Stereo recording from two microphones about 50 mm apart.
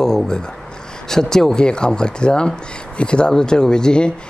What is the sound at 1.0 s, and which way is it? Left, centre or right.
Speech, centre.